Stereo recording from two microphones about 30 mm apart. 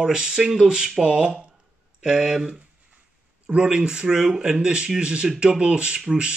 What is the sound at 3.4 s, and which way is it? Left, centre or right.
Speech, right.